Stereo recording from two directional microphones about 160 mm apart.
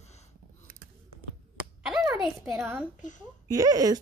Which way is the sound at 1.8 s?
5° right (ahead or behind).